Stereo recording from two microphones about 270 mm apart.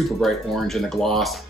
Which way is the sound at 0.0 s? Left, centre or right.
Centre.